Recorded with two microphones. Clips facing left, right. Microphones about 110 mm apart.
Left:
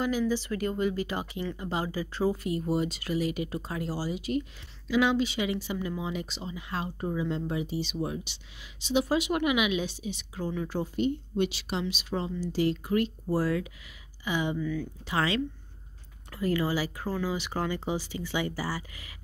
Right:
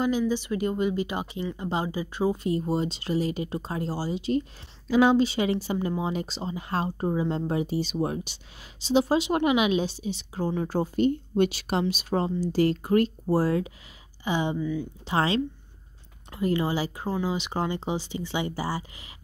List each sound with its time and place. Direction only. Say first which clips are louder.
0.0 s speech: right 3 dB; 20° right (ahead or behind); by 8.4 s 45° right (ahead or behind)
8.8 s speech: right 4 dB; 30° right (ahead or behind)
15.1 s speech: right 3 dB; 30° right (ahead or behind)